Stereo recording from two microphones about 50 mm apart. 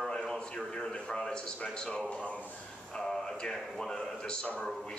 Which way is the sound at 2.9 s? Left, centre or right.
Centre.